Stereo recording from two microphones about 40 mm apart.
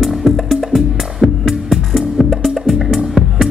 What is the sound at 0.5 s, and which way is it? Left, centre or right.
Music, centre.